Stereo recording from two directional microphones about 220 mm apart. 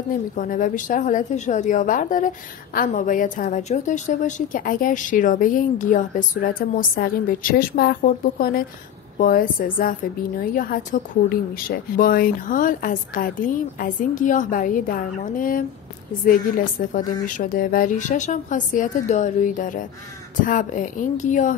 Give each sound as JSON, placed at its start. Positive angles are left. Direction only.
{"t": 0.1, "sound": "a woman's voice", "side_deg": 35}